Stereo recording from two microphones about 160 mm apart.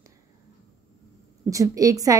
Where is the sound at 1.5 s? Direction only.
20° right (ahead or behind).